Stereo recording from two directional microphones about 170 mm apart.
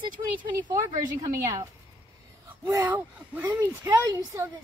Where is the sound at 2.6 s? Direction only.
10° right (ahead or behind).